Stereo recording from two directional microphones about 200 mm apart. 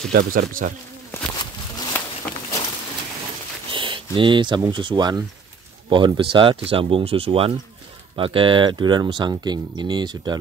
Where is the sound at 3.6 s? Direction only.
25° right (ahead or behind).